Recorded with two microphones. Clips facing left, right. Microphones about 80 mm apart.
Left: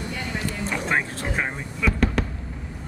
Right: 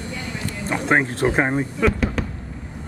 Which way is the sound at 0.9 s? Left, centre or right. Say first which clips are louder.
Right 9 dB; right.